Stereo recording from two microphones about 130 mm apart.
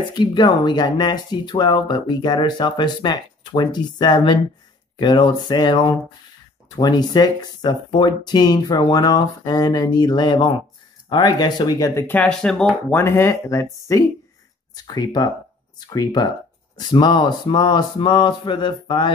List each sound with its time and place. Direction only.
0.1 s speech: 35° left (ahead or behind)
12.2 s speech: 5° left (ahead or behind)
12.9 s speech: 20° left (ahead or behind); by 19.1 s 40° left (ahead or behind)